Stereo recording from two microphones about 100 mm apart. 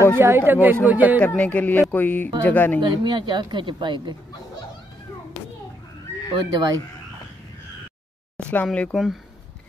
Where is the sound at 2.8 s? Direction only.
50° right (ahead or behind).